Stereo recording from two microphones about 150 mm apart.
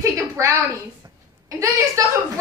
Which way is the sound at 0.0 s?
20° right (ahead or behind).